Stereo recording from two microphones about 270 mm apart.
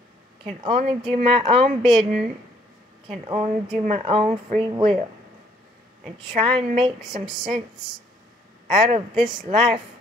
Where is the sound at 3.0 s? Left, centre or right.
Centre.